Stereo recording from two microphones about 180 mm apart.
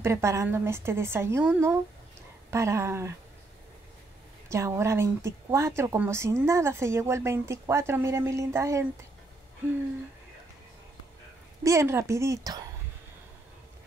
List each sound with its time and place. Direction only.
0.0 s a woman's voice: 15° right (ahead or behind)
4.5 s a woman's voice: 15° right (ahead or behind)
11.6 s a woman's voice: 15° right (ahead or behind)